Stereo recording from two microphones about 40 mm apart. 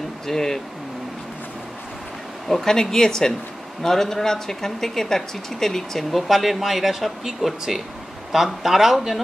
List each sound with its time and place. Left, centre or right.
0.3 s speech: centre
2.4 s speech: centre